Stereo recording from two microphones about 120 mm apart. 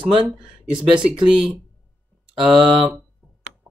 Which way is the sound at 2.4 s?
45° right (ahead or behind).